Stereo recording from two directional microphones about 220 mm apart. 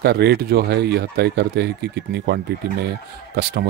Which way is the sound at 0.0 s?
50° right (ahead or behind).